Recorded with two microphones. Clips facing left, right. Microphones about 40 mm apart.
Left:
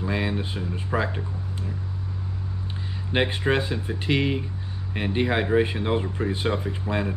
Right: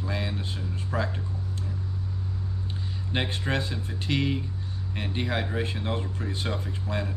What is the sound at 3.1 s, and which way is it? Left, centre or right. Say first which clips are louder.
Speech: left 6 dB; centre.